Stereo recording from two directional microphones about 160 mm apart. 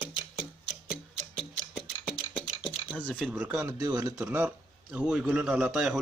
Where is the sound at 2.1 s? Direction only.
5° left (ahead or behind).